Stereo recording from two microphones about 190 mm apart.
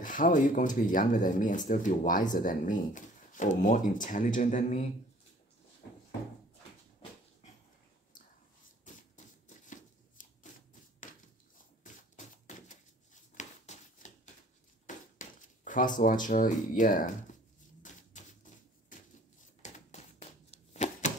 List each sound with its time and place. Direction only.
0.0 s speech: 45° left (ahead or behind)
8.8 s shuffling cards: 40° left (ahead or behind)
11.5 s a sound: 40° left (ahead or behind)
14.9 s speech: 40° left (ahead or behind)
17.8 s typewriter: 40° left (ahead or behind)